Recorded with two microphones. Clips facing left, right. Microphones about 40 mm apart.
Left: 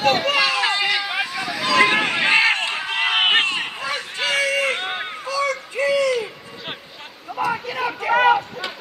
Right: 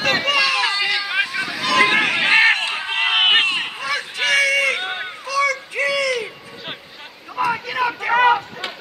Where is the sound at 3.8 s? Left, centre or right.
Right.